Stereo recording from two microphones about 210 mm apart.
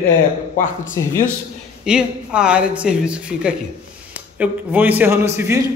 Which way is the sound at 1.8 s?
5° right (ahead or behind).